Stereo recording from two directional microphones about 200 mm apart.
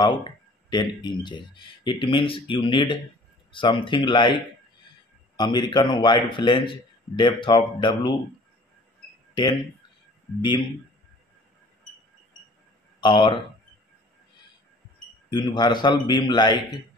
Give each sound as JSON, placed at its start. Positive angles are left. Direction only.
{"t": 0.0, "sound": "speech", "side_deg": 20}
{"t": 9.3, "sound": "speech", "side_deg": 20}
{"t": 13.0, "sound": "speech", "side_deg": 25}
{"t": 15.4, "sound": "speech", "side_deg": 20}